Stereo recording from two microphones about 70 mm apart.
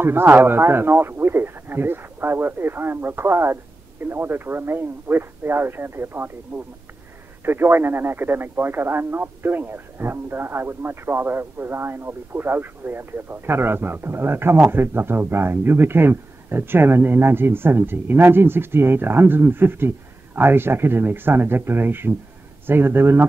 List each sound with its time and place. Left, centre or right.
0.0 s speech: right